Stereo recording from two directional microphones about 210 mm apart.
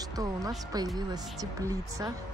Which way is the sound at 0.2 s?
15° right (ahead or behind).